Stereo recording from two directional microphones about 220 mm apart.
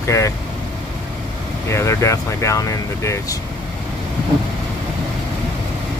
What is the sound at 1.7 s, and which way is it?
Speech, 15° left (ahead or behind).